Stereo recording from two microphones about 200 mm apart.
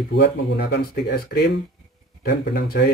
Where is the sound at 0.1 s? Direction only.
60° left (ahead or behind).